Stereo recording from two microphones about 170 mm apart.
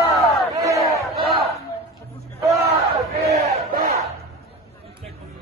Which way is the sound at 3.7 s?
65° right (ahead or behind).